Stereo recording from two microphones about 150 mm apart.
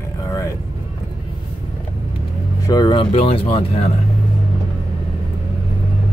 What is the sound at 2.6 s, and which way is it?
Speech, 25° left (ahead or behind).